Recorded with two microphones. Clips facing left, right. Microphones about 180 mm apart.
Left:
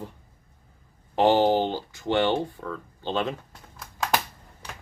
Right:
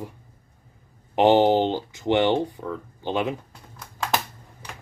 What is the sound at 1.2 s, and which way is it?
Speech, 20° right (ahead or behind).